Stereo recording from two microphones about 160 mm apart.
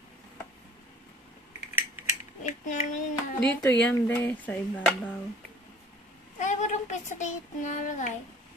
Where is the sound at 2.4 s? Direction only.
50° left (ahead or behind).